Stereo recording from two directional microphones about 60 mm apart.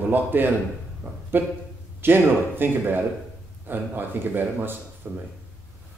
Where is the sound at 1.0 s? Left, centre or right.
Right.